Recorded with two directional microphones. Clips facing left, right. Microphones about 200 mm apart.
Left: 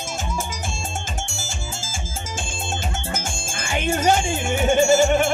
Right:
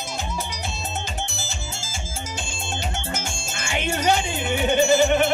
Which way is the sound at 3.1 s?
50° left (ahead or behind).